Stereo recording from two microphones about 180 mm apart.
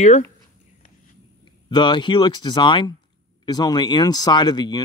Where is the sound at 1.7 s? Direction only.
25° left (ahead or behind).